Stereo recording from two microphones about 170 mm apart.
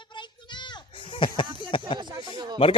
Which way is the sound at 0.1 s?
25° left (ahead or behind).